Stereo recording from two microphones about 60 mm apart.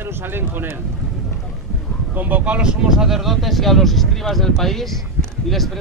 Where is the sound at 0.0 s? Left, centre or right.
Right.